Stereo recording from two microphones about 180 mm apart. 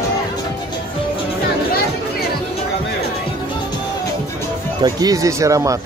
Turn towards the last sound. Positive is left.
turn(degrees=-15)  # may be behind; listen again after turning